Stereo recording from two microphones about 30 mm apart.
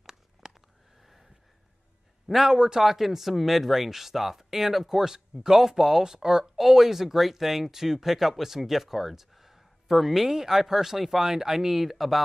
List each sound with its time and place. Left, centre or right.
0.0 s a sound: centre
2.4 s speech: right
2.8 s speech: centre
6.5 s speech: centre